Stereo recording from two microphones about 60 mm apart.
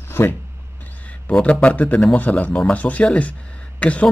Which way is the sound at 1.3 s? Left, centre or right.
Centre.